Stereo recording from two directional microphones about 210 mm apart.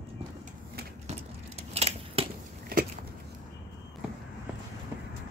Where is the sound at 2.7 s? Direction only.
45° right (ahead or behind).